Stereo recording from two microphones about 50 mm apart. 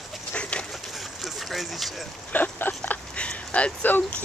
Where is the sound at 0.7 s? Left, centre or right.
Centre.